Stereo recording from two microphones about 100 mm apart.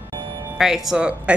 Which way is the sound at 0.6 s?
5° right (ahead or behind).